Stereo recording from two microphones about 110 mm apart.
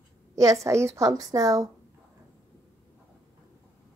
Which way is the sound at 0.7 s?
25° right (ahead or behind).